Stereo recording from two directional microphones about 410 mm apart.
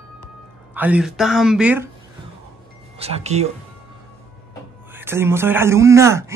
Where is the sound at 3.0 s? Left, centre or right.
Centre.